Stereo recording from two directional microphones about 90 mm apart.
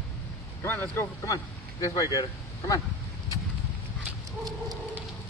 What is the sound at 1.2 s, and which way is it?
Speech, 40° left (ahead or behind).